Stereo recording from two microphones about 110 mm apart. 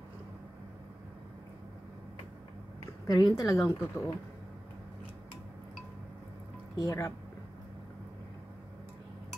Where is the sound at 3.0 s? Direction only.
30° left (ahead or behind).